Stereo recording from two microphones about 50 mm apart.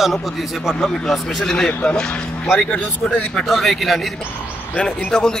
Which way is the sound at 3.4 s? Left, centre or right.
Centre.